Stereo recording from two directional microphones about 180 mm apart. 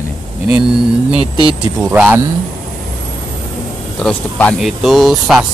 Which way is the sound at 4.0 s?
5° left (ahead or behind).